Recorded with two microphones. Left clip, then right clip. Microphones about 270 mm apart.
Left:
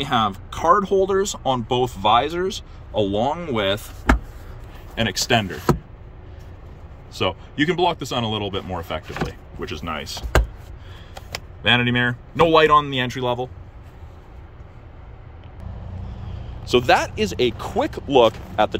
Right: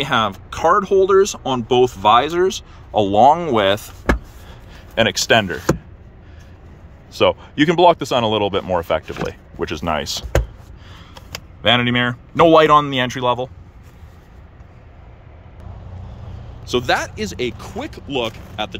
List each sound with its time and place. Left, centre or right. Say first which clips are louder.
0.0 s speech: right 3 dB; centre
4.9 s speech: right 6 dB; centre
7.1 s speech: right 8 dB; centre
11.6 s speech: right 3 dB; centre
16.6 s speech: left 2 dB; centre